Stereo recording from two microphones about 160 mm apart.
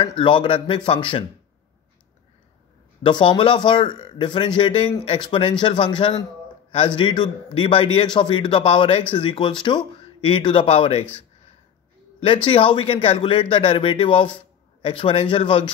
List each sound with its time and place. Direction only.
0.0 s a man's voice: 30° left (ahead or behind)
3.0 s a man's voice: 30° left (ahead or behind)